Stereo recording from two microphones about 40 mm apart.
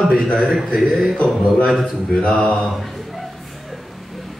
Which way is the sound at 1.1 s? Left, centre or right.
Left.